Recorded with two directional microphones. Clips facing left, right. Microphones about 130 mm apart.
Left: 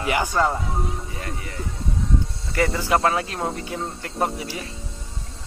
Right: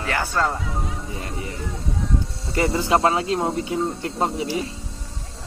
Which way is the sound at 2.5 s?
25° right (ahead or behind).